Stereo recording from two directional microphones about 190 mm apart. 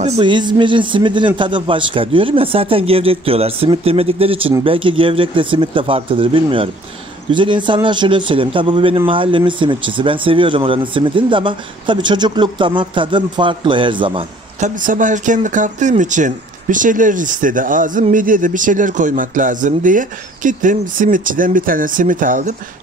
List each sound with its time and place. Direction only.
0.0 s a man's voice: 30° right (ahead or behind)
14.6 s speech: 45° right (ahead or behind)